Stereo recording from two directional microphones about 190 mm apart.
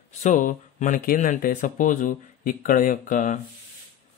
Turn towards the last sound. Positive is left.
turn(degrees=45)  # may be behind; listen again after turning